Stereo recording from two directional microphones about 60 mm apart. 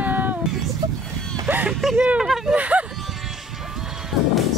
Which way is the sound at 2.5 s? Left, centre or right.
Right.